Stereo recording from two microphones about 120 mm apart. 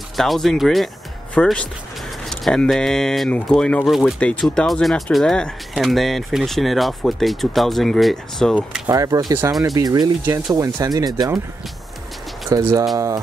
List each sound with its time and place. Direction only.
0.2 s speech: centre (ahead or behind)
8.5 s speech: 10° right (ahead or behind)
8.9 s speech: 30° right (ahead or behind)
12.5 s speech: 30° right (ahead or behind)